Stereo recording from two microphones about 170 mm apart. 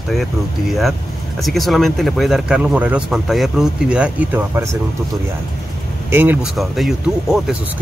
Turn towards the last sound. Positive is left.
turn(degrees=0)  # may be behind; listen again after turning